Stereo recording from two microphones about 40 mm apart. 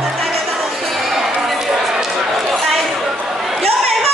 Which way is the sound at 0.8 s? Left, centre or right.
Centre.